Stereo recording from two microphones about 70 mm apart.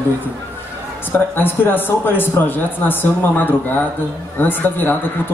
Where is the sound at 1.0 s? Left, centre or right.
Left.